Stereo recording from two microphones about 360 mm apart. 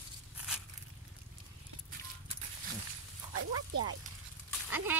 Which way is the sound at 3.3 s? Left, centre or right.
Right.